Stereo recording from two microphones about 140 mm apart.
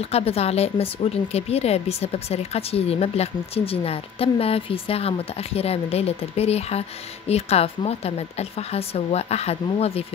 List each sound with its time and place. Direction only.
0.0 s speech: 45° left (ahead or behind)